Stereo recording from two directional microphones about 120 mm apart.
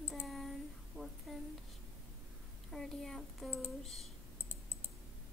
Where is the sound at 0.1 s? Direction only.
Centre (ahead or behind).